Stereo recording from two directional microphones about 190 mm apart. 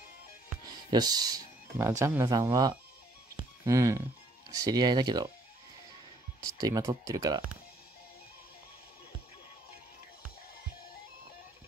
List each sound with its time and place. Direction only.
0.8 s speech: 20° right (ahead or behind)
3.3 s a sound: 15° right (ahead or behind)
4.5 s speech: 20° right (ahead or behind)
6.4 s speech: 20° right (ahead or behind)